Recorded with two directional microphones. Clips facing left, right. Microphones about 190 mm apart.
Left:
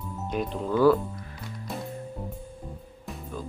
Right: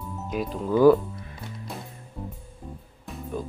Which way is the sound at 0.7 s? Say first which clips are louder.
Right 4 dB; 15° right (ahead or behind).